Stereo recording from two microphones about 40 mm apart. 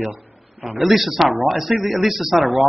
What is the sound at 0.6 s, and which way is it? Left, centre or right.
A man's voice, centre.